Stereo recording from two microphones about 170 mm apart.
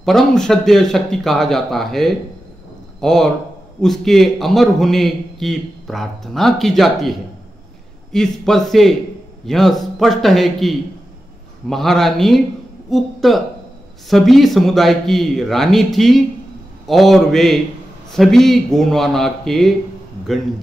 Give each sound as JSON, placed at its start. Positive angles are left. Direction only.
{"t": 0.0, "sound": "a man's voice", "side_deg": 5}